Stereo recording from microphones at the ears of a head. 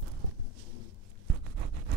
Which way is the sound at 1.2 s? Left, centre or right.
Right.